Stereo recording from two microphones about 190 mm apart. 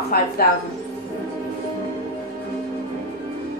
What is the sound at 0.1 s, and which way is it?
Speech, 50° left (ahead or behind).